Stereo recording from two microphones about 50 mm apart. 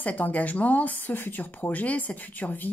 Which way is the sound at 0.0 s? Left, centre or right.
Left.